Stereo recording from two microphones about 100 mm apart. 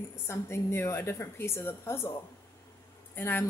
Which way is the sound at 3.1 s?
20° left (ahead or behind).